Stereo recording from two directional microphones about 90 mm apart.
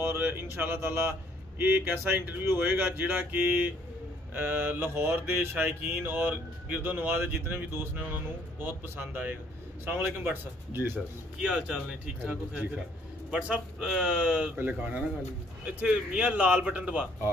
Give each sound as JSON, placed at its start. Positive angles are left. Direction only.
{"t": 0.0, "sound": "speech", "side_deg": -25}
{"t": 1.6, "sound": "a sound", "side_deg": -20}
{"t": 11.4, "sound": "a man's voice", "side_deg": -10}
{"t": 13.3, "sound": "a man's voice", "side_deg": -10}